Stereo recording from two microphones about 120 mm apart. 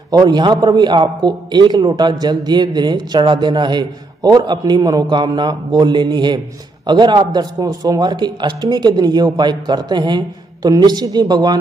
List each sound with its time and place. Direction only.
0.1 s a man's voice: 35° right (ahead or behind)